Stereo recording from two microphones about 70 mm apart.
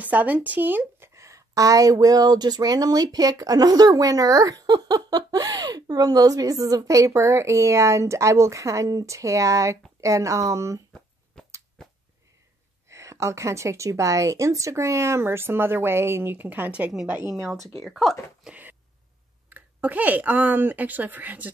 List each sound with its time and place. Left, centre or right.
0.0 s a woman's voice: right
1.1 s speech: right
11.4 s a sound: centre
12.9 s a woman's voice: right; by 17.2 s centre
17.2 s a woman's voice: right
17.7 s speech: centre
18.4 s a sound: centre
19.5 s speech: right